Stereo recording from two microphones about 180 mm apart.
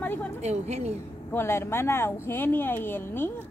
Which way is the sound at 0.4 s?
35° right (ahead or behind).